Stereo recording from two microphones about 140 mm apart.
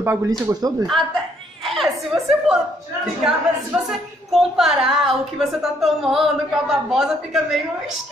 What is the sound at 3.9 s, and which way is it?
A woman's voice, centre (ahead or behind).